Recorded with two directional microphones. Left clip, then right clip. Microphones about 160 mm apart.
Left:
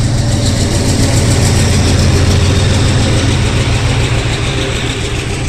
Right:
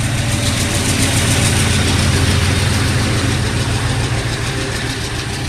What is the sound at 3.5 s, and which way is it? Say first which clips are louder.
Vehicle: left 4 dB; 55° right (ahead or behind).